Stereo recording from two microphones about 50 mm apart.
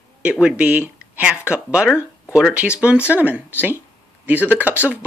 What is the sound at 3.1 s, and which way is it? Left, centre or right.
Speech, right.